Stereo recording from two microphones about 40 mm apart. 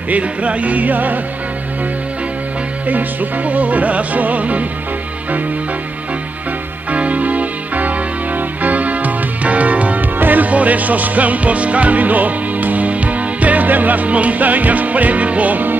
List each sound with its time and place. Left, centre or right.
0.1 s music: right
2.9 s music: right
6.9 s music: right
10.1 s music: right